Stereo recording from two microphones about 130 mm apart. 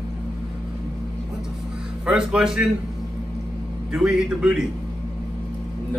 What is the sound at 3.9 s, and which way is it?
Speech, 5° right (ahead or behind).